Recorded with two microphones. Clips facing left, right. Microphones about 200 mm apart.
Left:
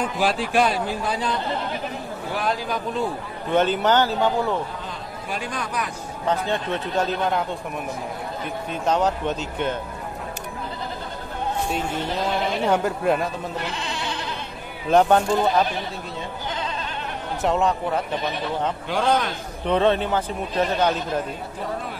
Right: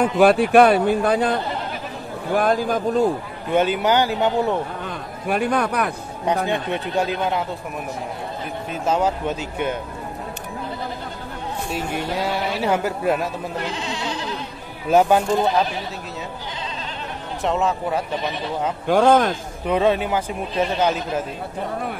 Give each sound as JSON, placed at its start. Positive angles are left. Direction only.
{"t": 0.0, "sound": "a man's voice", "side_deg": -60}
{"t": 3.5, "sound": "speech", "side_deg": -10}
{"t": 4.8, "sound": "a man's voice", "side_deg": -60}
{"t": 6.5, "sound": "speech", "side_deg": -10}
{"t": 8.8, "sound": "speech", "side_deg": -5}
{"t": 11.7, "sound": "speech", "side_deg": -10}
{"t": 14.9, "sound": "speech", "side_deg": -10}
{"t": 17.4, "sound": "a man's voice", "side_deg": 0}
{"t": 18.9, "sound": "speech", "side_deg": -50}
{"t": 19.6, "sound": "speech", "side_deg": -10}